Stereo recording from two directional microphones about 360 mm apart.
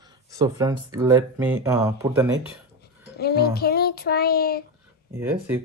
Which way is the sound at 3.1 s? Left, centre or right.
Left.